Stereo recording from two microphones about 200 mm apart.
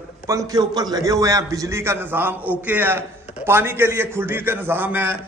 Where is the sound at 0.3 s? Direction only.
15° right (ahead or behind).